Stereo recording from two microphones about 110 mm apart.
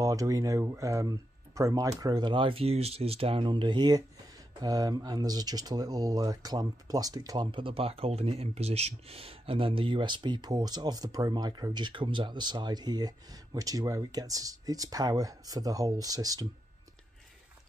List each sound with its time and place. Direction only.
0.0 s speech: 30° right (ahead or behind)